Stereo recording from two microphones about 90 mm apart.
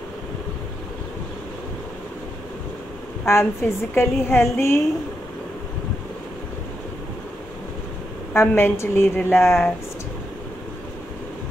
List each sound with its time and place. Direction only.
3.3 s a woman's voice: 30° left (ahead or behind)
8.4 s a woman's voice: 30° left (ahead or behind)